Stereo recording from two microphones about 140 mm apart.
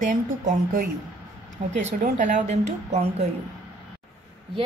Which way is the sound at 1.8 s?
55° right (ahead or behind).